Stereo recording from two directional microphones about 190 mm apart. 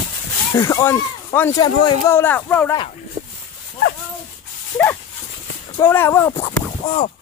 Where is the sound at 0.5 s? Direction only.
15° left (ahead or behind).